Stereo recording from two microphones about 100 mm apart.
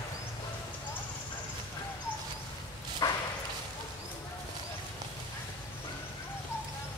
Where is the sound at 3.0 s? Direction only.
40° left (ahead or behind).